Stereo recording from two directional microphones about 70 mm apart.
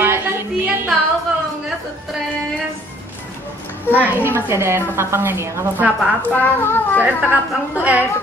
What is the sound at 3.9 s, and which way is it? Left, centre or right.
Speech, right.